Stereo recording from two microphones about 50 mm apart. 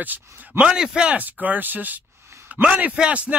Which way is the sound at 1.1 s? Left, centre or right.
Right.